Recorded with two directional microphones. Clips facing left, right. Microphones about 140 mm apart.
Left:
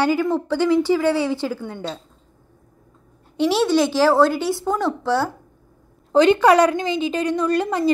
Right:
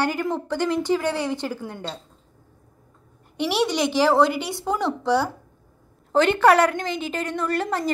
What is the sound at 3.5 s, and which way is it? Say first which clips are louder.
Speech: left 4 dB; 15° right (ahead or behind).